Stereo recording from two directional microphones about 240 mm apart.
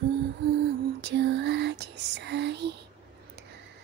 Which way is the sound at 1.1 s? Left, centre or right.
Right.